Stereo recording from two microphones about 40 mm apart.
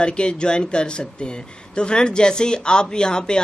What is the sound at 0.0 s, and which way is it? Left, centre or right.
Speech, left.